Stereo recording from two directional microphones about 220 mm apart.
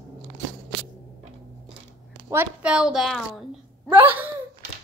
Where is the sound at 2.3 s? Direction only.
10° right (ahead or behind).